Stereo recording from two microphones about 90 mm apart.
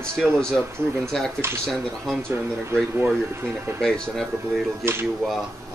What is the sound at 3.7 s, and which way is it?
Speech, 5° left (ahead or behind).